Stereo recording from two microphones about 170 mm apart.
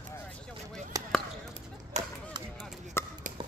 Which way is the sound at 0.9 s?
20° right (ahead or behind).